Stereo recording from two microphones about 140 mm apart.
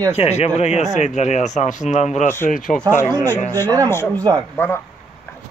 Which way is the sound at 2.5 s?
75° left (ahead or behind).